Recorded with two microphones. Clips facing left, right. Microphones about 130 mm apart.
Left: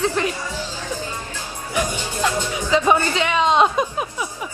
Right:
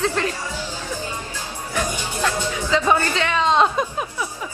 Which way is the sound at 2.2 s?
15° left (ahead or behind).